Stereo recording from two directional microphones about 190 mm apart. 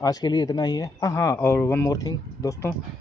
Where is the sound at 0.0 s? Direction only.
20° left (ahead or behind).